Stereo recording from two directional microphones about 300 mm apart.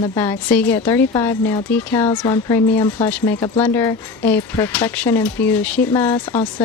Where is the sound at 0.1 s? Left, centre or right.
Centre.